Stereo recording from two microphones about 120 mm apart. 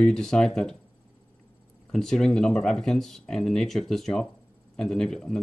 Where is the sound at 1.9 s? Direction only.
5° left (ahead or behind).